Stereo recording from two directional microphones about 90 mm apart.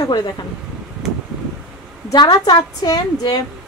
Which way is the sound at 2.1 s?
50° left (ahead or behind).